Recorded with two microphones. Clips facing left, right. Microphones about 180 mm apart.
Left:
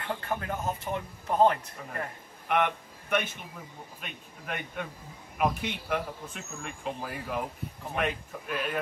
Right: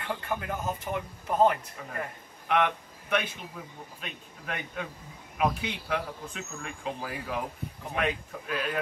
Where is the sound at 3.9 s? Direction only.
5° left (ahead or behind).